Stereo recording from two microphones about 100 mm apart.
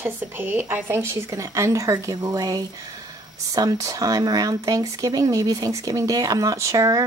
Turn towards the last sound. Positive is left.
turn(degrees=-30)  # may be behind; listen again after turning